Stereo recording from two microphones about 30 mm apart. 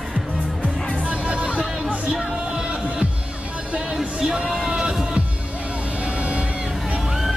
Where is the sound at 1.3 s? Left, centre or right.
Right.